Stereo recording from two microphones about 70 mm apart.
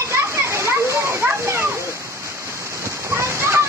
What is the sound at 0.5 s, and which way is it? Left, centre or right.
Splash, right.